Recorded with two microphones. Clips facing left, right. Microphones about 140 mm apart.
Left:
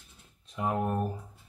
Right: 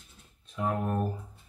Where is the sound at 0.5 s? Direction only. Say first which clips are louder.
Even; 15° left (ahead or behind).